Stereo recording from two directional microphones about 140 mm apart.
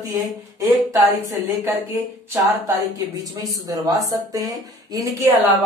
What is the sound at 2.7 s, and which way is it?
Speech, 25° right (ahead or behind).